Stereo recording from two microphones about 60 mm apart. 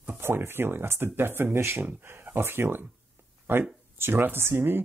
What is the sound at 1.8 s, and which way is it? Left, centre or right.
Speech, right.